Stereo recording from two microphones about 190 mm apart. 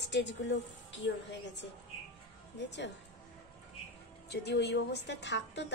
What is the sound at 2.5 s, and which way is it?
Speech, 65° left (ahead or behind).